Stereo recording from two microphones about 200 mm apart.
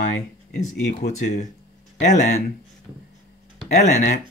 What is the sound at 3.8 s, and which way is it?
Speech, 40° left (ahead or behind).